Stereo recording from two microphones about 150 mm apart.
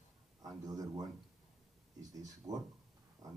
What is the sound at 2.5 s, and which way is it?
Speech, 25° right (ahead or behind).